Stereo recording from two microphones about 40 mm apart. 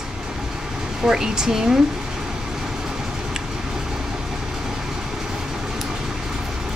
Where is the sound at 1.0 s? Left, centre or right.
Centre.